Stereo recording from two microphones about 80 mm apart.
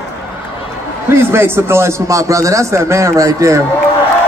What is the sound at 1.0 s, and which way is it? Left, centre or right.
A man's voice, right.